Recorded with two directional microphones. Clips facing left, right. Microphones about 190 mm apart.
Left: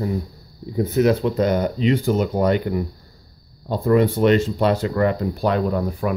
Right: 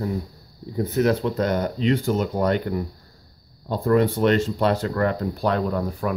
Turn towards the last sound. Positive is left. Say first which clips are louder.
# left 3 dB
turn(degrees=10)  # may be behind; listen again after turning